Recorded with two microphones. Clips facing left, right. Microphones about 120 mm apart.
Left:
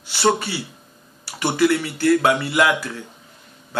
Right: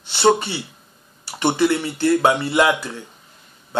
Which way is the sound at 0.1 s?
20° right (ahead or behind).